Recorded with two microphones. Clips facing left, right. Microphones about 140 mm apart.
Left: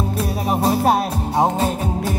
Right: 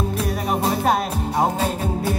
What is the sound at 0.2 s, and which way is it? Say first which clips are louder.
Music: left 4 dB; centre (ahead or behind).